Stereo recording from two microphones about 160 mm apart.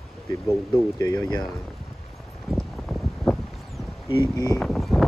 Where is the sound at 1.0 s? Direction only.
20° left (ahead or behind).